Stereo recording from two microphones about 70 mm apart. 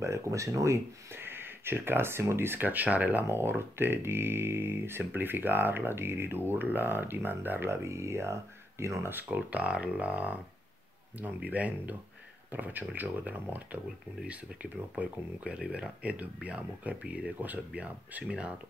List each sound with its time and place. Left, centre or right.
0.0 s speech: right
9.0 s speech: right